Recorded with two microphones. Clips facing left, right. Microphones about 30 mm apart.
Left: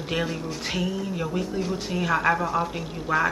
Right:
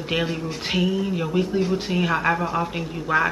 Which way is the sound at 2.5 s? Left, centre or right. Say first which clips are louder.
Right 1 dB; right.